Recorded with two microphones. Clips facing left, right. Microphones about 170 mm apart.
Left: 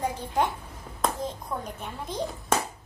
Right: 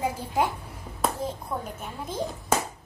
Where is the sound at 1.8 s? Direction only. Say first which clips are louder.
Right 1 dB; 5° right (ahead or behind).